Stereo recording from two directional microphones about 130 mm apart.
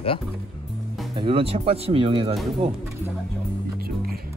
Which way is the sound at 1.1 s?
45° right (ahead or behind).